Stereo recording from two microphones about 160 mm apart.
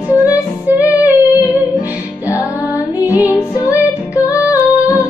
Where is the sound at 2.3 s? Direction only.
20° left (ahead or behind).